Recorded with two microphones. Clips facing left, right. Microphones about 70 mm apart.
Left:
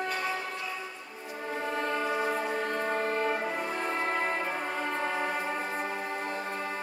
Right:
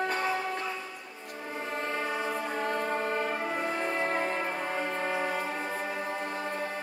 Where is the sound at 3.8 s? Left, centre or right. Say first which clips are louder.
Right 1 dB; left.